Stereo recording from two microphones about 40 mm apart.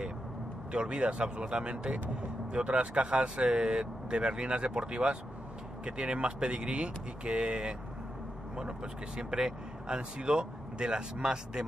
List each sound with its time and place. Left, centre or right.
0.7 s speech: right